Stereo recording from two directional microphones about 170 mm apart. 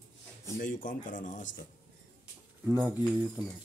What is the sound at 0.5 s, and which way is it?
Speech, 50° left (ahead or behind).